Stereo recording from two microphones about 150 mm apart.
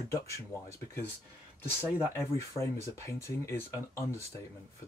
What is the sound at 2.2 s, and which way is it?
Speech, 20° left (ahead or behind).